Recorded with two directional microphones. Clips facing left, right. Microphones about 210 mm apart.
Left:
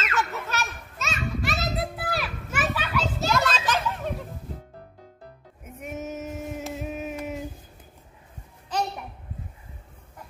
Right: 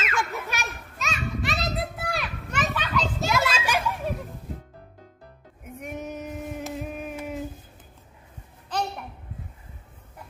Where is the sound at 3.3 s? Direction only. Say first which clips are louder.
Even; 10° right (ahead or behind).